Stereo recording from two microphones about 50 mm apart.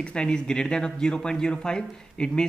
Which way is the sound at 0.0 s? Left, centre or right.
Centre.